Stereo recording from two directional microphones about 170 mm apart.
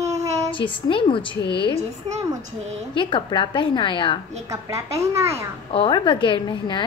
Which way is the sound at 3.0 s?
30° left (ahead or behind).